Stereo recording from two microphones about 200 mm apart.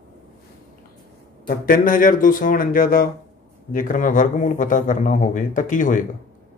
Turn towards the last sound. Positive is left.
turn(degrees=40)  # may be behind; listen again after turning